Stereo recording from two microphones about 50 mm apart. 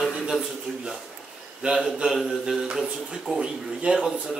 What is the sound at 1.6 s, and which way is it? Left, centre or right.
Speech, centre.